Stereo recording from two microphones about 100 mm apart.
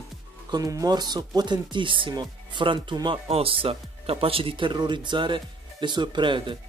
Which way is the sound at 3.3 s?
70° right (ahead or behind).